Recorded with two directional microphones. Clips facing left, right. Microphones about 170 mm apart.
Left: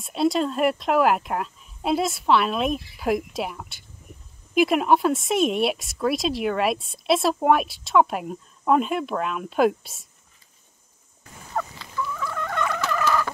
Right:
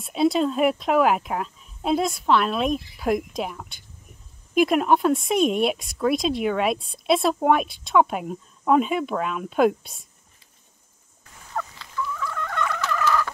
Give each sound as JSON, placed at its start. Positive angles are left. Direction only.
{"t": 0.0, "sound": "speech", "side_deg": 0}
{"t": 11.2, "sound": "fowl", "side_deg": 20}